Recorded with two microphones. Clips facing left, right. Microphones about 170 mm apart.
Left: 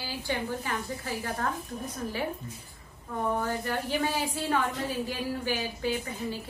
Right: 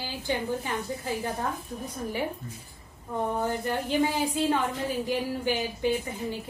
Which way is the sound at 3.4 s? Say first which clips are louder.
Right 2 dB; 20° right (ahead or behind).